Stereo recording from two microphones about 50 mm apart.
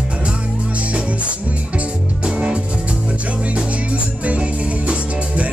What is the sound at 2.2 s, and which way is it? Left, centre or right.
Music, right.